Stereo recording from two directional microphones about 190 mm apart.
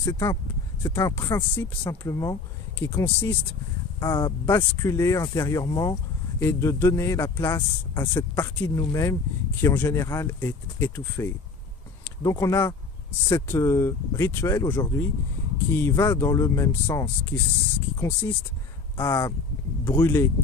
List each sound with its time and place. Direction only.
0.0 s speech: 15° left (ahead or behind)